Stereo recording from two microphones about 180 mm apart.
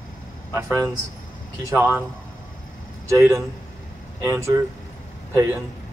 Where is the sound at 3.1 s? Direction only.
15° right (ahead or behind).